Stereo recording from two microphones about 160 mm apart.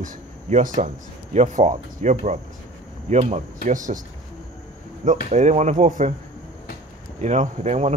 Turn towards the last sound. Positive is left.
turn(degrees=-45)  # may be behind; listen again after turning